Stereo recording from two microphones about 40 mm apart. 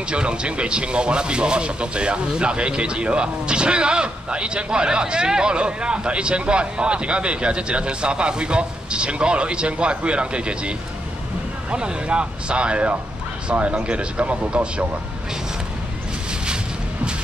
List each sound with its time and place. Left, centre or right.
0.1 s speech: right
11.7 s speech: right